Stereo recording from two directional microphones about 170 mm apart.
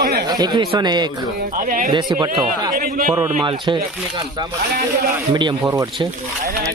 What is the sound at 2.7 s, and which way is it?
Speech, 55° right (ahead or behind).